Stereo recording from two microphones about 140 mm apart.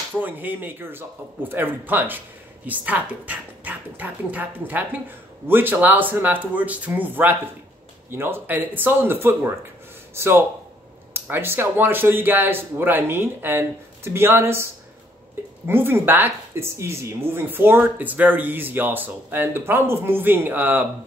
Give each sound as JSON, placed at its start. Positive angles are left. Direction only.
{"t": 0.2, "sound": "a man's voice", "side_deg": -10}